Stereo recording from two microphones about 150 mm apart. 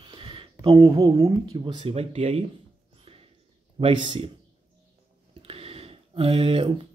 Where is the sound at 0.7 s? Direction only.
20° right (ahead or behind).